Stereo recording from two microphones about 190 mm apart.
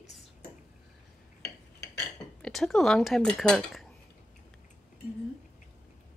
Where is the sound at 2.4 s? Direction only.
Centre (ahead or behind).